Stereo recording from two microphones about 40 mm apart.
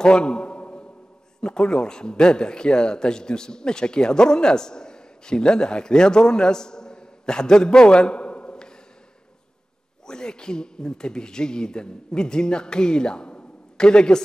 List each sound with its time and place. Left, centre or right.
0.0 s a sound: left
1.4 s a man's voice: left
10.0 s speech: centre